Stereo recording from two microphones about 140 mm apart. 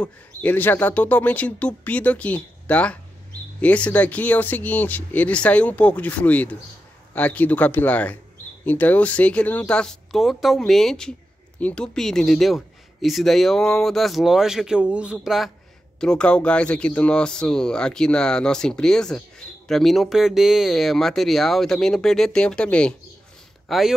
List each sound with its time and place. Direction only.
0.0 s speech: 10° left (ahead or behind)